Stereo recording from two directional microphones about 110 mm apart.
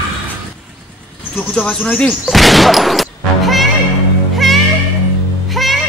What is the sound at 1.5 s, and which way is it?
A man's voice, 5° left (ahead or behind).